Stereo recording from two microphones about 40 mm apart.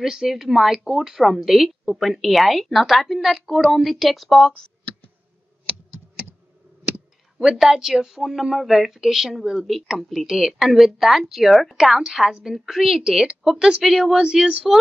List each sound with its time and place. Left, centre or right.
0.0 s a woman's voice: centre
7.3 s a woman's voice: centre
12.0 s speech: centre
13.9 s speech: centre